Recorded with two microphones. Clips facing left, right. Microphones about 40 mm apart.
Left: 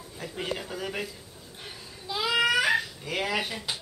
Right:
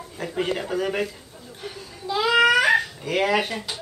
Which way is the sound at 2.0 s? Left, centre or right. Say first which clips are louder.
Right 7 dB; centre.